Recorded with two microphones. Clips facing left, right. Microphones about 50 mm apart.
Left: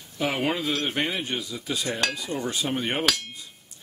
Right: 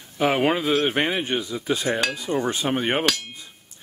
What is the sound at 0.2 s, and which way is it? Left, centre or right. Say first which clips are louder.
Speech: right 5 dB; right.